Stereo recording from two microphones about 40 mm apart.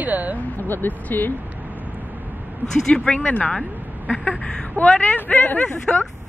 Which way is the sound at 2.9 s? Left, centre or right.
Left.